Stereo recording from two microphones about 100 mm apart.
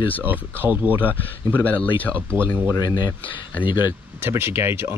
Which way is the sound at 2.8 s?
40° left (ahead or behind).